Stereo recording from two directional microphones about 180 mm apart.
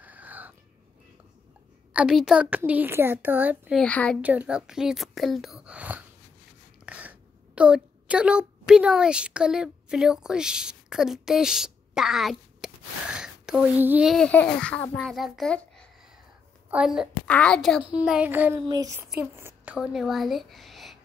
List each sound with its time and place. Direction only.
0.0 s a sound: 10° right (ahead or behind)
2.0 s a child's voice: 5° right (ahead or behind)
3.7 s speech: 5° left (ahead or behind)
4.2 s a woman's voice: 10° right (ahead or behind)